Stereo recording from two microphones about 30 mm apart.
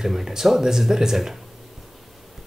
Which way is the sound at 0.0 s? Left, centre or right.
Centre.